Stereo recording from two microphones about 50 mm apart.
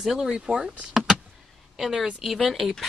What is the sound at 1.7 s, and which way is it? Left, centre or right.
A woman's voice, centre.